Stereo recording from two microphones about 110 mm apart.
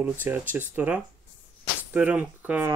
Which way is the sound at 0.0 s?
15° right (ahead or behind).